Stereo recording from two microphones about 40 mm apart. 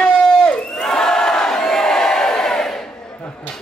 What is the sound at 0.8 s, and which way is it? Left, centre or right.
Crowd, centre.